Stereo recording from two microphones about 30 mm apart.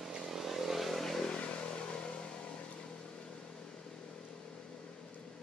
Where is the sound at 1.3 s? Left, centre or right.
Left.